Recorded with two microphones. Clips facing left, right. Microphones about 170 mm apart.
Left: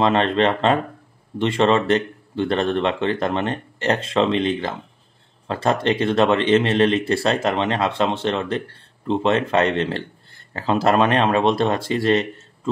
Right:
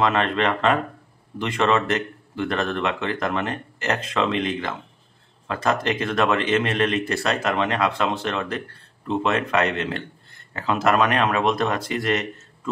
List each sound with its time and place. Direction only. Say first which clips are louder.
0.0 s speech: left 4 dB; 30° left (ahead or behind)